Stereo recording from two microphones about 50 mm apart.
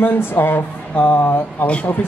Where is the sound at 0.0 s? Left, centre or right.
Left.